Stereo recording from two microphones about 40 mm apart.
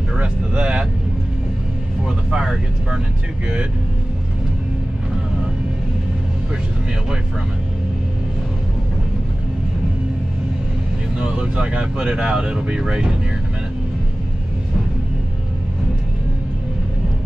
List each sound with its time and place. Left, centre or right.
0.2 s vehicle: right
2.0 s vehicle: centre
11.1 s speech: right